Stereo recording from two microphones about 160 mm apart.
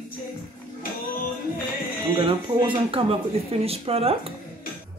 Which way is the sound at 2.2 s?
30° right (ahead or behind).